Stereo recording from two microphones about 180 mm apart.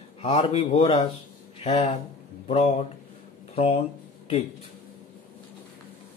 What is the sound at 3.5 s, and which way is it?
Speech, 35° left (ahead or behind).